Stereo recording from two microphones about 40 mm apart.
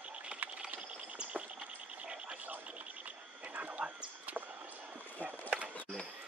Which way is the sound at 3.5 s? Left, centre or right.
Right.